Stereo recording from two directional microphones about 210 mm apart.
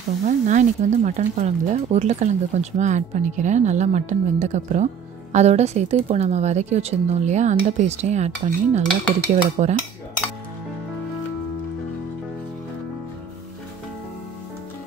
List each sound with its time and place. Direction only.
0.3 s speech: 35° right (ahead or behind)